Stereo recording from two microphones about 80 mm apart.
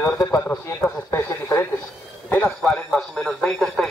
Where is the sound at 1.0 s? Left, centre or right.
Left.